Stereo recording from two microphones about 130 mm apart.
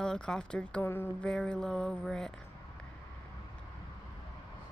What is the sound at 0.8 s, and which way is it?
Speech, 20° left (ahead or behind).